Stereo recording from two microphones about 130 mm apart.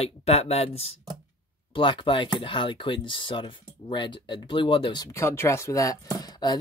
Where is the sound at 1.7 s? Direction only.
40° left (ahead or behind).